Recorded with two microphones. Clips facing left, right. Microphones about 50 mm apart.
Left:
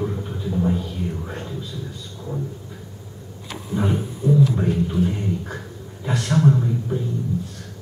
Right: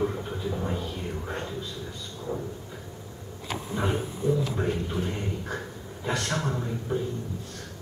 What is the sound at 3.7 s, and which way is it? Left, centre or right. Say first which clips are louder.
Speech: left 6 dB; centre.